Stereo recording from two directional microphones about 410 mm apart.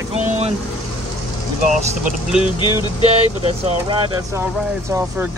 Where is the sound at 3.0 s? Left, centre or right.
Centre.